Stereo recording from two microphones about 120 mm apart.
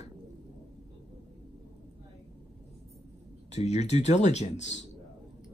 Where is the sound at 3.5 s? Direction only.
70° left (ahead or behind).